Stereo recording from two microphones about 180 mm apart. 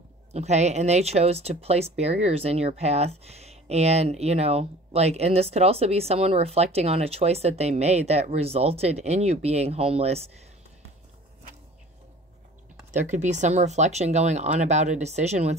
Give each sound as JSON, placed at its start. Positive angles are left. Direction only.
{"t": 0.3, "sound": "speech", "side_deg": -40}
{"t": 12.9, "sound": "speech", "side_deg": -40}